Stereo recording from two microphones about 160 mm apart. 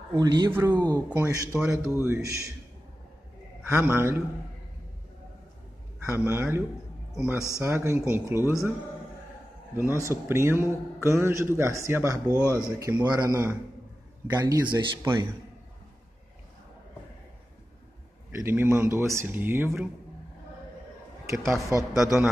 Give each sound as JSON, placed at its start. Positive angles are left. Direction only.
{"t": 0.1, "sound": "speech", "side_deg": -25}
{"t": 0.5, "sound": "a man's voice", "side_deg": -15}
{"t": 3.6, "sound": "a man's voice", "side_deg": -15}
{"t": 6.1, "sound": "a man's voice", "side_deg": -15}
{"t": 7.3, "sound": "speech", "side_deg": 20}
{"t": 7.6, "sound": "a man's voice", "side_deg": -15}
{"t": 9.8, "sound": "a man's voice", "side_deg": -15}
{"t": 12.3, "sound": "speech", "side_deg": 15}
{"t": 12.7, "sound": "a man's voice", "side_deg": -20}
{"t": 18.4, "sound": "a man's voice", "side_deg": -15}
{"t": 21.3, "sound": "a man's voice", "side_deg": -20}